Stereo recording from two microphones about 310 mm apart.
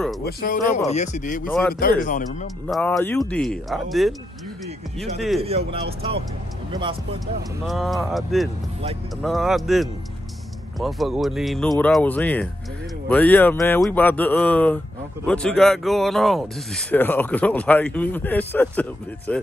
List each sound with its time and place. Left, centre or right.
0.2 s speech: left
2.7 s speech: centre
5.7 s speech: centre
7.6 s speech: centre